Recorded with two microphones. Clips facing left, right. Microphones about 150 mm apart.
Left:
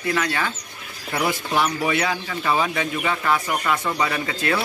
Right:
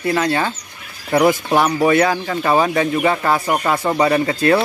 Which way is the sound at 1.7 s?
60° right (ahead or behind).